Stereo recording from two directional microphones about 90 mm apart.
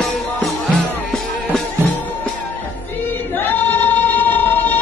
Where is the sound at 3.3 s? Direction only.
20° left (ahead or behind).